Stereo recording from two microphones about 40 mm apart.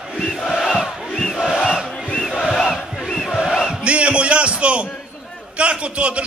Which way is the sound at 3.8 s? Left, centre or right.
Right.